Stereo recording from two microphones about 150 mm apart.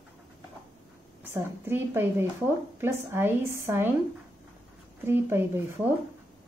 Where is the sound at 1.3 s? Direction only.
15° right (ahead or behind).